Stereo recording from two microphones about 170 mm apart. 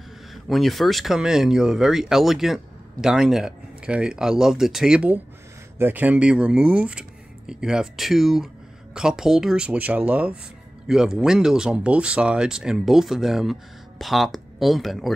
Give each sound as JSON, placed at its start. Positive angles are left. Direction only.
{"t": 0.3, "sound": "speech", "side_deg": 0}